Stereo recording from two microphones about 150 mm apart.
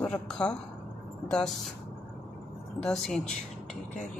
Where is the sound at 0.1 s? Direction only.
5° left (ahead or behind).